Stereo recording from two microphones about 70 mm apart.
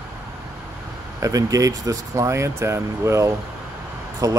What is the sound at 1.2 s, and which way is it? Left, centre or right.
Speech, right.